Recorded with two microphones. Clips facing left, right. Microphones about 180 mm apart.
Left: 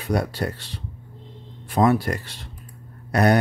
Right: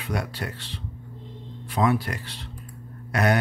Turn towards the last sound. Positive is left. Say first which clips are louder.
# left 4 dB
turn(degrees=35)  # may be behind; listen again after turning